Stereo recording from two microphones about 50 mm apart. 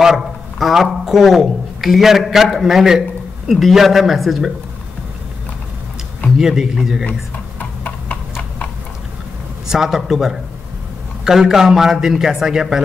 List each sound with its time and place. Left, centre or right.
0.0 s a man's voice: centre
6.3 s a man's voice: centre
7.1 s tick-tock: left
9.7 s a man's voice: centre